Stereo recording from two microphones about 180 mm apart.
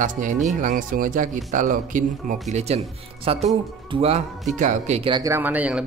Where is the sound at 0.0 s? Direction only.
45° right (ahead or behind).